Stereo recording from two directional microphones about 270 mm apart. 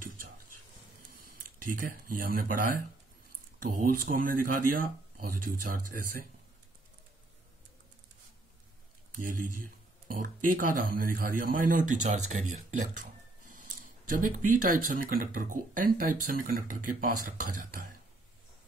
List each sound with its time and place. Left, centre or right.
1.6 s speech: right
9.1 s speech: right